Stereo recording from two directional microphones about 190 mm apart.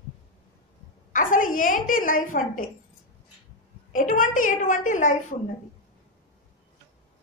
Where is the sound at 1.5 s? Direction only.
45° left (ahead or behind).